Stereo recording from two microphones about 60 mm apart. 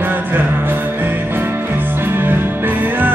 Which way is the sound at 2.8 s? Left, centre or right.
Right.